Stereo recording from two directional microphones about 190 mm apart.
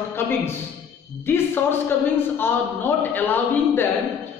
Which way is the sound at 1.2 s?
10° left (ahead or behind).